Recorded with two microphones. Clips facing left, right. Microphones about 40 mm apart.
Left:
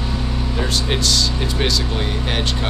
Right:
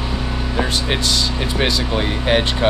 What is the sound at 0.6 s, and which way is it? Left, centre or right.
Speech, centre.